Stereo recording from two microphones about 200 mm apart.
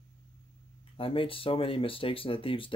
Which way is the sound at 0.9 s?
25° left (ahead or behind).